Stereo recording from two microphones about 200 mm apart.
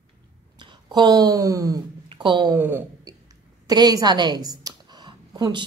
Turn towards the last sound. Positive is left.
turn(degrees=-20)  # may be behind; listen again after turning